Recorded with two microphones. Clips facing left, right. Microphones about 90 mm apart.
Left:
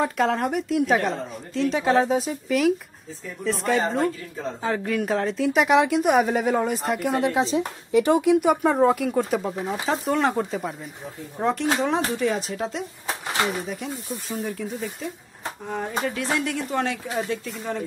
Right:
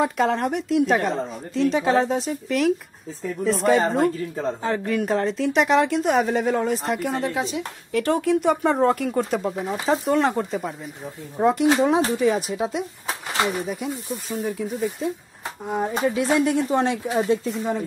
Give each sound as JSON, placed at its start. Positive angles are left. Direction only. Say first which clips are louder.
{"t": 0.0, "sound": "speech", "louder": "right 1 dB", "side_deg": 0}
{"t": 7.3, "sound": "speech", "louder": "left 4 dB", "side_deg": 30}
{"t": 7.9, "sound": "speech", "louder": "left 3 dB", "side_deg": 15}
{"t": 15.7, "sound": "speech", "louder": "right 5 dB", "side_deg": -15}